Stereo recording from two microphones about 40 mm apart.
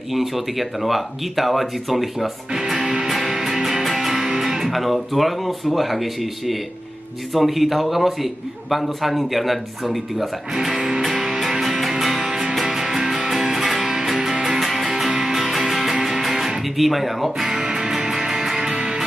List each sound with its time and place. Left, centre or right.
0.1 s a man's voice: centre
2.5 s speech: centre
3.1 s music: centre
4.6 s a man's voice: centre
11.3 s music: centre
12.3 s music: centre
15.0 s music: centre